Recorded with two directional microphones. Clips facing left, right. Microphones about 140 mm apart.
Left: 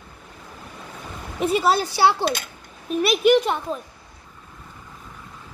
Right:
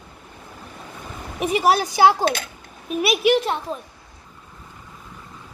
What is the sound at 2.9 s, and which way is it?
Speech, 5° right (ahead or behind).